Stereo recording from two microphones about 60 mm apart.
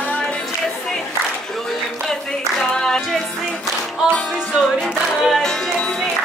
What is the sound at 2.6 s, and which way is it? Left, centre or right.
Singing, centre.